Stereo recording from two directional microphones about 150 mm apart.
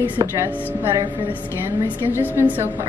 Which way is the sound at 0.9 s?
30° right (ahead or behind).